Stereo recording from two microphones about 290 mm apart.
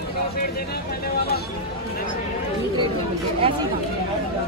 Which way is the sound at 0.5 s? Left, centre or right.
Left.